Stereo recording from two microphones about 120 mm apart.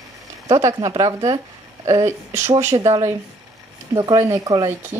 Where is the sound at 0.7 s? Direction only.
40° right (ahead or behind).